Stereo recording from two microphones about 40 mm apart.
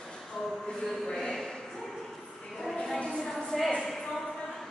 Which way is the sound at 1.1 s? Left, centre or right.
Centre.